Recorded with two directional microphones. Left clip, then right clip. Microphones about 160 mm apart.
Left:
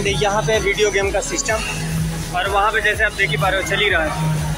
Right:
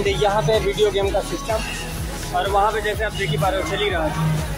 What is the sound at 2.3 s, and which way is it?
Speech, 10° right (ahead or behind).